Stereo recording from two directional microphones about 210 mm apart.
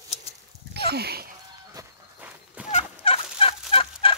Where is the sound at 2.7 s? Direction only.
25° left (ahead or behind).